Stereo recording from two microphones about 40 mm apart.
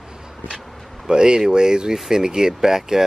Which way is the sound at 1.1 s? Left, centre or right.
Centre.